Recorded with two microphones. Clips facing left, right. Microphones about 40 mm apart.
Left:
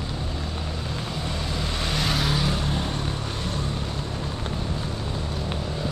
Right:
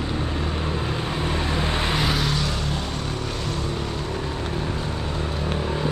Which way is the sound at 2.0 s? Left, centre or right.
Centre.